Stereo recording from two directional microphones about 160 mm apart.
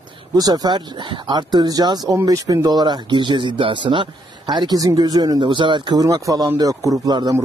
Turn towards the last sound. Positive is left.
turn(degrees=-25)  # may be behind; listen again after turning